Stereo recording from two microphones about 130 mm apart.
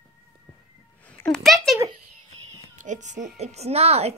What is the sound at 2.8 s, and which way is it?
Speech, 70° right (ahead or behind).